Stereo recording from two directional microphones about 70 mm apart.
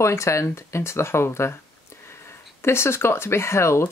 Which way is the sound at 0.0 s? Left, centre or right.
Left.